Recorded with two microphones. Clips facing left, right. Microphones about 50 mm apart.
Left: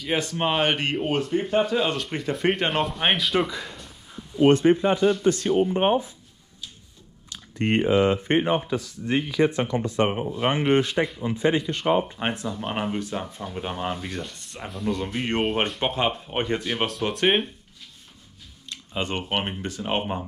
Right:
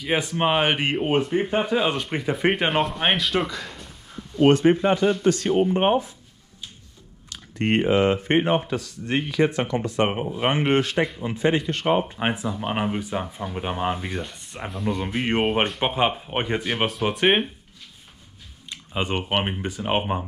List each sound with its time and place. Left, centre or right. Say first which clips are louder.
0.0 s speech: right 2 dB; centre
2.8 s speech: right 1 dB; centre
4.5 s speech: right 1 dB; right
5.6 s speech: right 1 dB; right
7.6 s speech: right 1 dB; right
10.7 s speech: even; right
12.2 s speech: right 3 dB; centre
18.7 s speech: right 2 dB; centre